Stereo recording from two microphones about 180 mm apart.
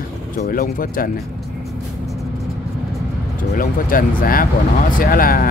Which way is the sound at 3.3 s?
50° left (ahead or behind).